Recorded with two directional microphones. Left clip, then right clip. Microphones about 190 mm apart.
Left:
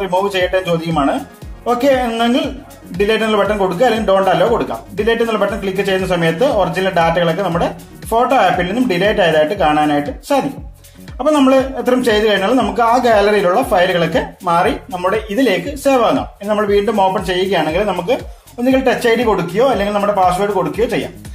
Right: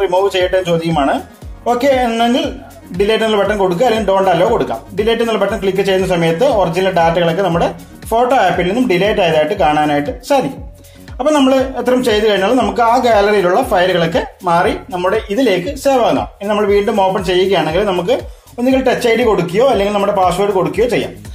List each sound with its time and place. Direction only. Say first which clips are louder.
0.0 s speech: right 3 dB; 15° right (ahead or behind)